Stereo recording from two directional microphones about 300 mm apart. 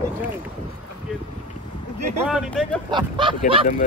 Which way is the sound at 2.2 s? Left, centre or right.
Centre.